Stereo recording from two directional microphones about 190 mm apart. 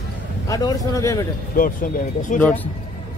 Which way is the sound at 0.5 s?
20° left (ahead or behind).